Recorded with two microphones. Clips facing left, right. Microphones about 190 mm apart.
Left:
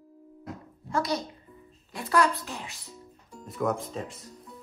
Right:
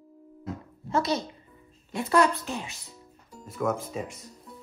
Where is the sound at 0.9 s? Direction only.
25° right (ahead or behind).